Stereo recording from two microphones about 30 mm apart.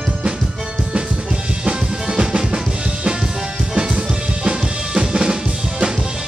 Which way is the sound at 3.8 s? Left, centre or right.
Right.